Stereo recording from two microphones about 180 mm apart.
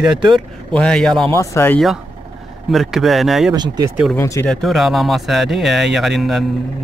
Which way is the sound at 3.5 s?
25° right (ahead or behind).